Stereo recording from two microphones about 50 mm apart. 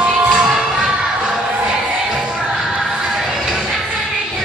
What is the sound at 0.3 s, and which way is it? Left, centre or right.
Music, centre.